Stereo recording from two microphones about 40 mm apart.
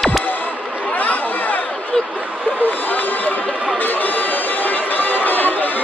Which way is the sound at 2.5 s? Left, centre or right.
Left.